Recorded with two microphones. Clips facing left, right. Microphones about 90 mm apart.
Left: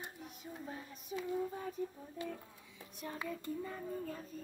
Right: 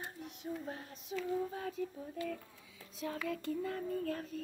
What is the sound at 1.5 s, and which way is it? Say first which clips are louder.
Child singing: right 1 dB; 90° right.